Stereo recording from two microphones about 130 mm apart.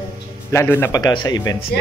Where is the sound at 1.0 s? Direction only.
30° left (ahead or behind).